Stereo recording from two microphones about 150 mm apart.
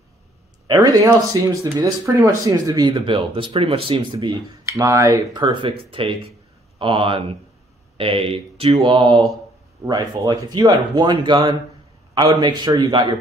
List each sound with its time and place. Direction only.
0.7 s speech: 25° right (ahead or behind)
4.6 s speech: 20° right (ahead or behind)